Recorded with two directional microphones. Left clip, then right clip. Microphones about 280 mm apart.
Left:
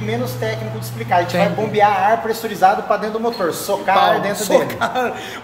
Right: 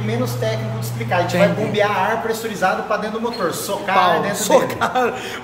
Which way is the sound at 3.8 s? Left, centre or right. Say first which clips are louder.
Left 1 dB; centre.